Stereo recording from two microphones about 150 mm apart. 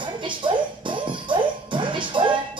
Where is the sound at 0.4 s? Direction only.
30° right (ahead or behind).